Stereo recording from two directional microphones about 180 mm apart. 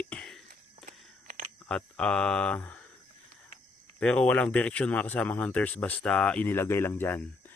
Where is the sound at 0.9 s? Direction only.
45° right (ahead or behind).